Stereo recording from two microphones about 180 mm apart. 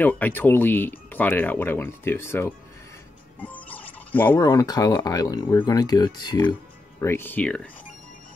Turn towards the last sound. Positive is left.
turn(degrees=5)  # may be behind; listen again after turning